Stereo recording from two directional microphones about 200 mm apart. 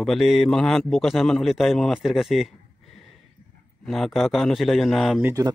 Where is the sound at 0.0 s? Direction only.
Centre (ahead or behind).